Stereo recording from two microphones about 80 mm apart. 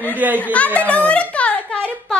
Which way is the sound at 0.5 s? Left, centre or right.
Centre.